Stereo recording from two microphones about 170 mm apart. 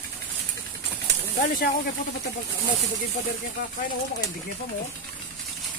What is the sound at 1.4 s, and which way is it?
Speech, 50° left (ahead or behind).